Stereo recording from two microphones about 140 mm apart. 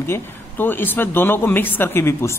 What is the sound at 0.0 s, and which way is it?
Speech, 15° left (ahead or behind).